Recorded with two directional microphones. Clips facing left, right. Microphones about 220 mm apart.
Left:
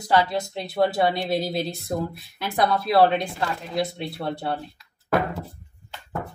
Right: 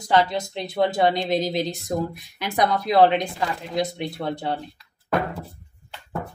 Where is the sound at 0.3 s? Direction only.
20° right (ahead or behind).